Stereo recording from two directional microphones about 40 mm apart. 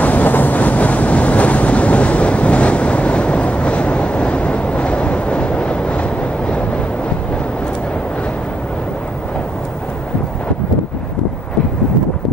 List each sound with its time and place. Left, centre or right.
0.0 s waves: left